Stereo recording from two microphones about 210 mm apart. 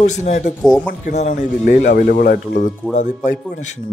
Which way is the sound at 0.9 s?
35° left (ahead or behind).